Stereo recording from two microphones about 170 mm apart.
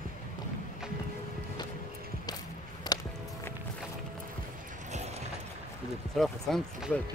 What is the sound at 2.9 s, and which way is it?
Music, 25° left (ahead or behind).